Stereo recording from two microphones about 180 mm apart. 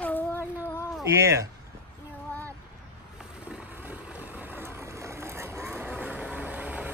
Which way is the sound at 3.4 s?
5° right (ahead or behind).